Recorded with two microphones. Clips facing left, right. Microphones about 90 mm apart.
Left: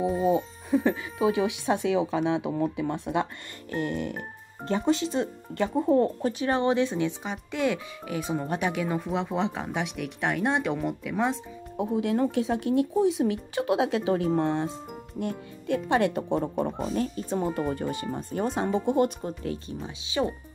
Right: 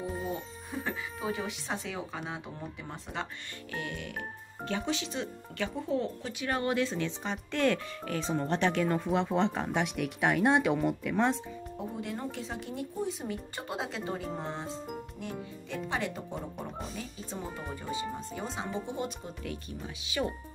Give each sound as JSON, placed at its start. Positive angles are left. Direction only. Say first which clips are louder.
{"t": 0.0, "sound": "speech", "louder": "left 11 dB", "side_deg": 5}
{"t": 0.7, "sound": "speech", "louder": "left 11 dB", "side_deg": 90}
{"t": 4.6, "sound": "speech", "louder": "left 8 dB", "side_deg": 35}
{"t": 6.4, "sound": "speech", "louder": "left 5 dB", "side_deg": 25}
{"t": 11.7, "sound": "speech", "louder": "left 12 dB", "side_deg": 75}
{"t": 19.4, "sound": "speech", "louder": "left 6 dB", "side_deg": 25}